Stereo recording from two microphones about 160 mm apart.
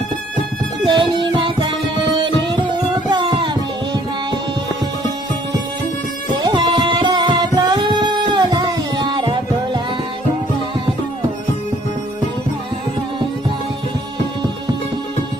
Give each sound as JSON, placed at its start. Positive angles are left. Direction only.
{"t": 0.8, "sound": "music", "side_deg": -30}
{"t": 3.1, "sound": "music", "side_deg": -30}
{"t": 6.4, "sound": "music", "side_deg": -30}